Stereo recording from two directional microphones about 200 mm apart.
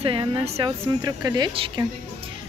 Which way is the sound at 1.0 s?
20° right (ahead or behind).